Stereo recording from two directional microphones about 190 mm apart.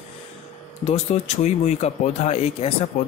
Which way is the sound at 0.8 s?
35° left (ahead or behind).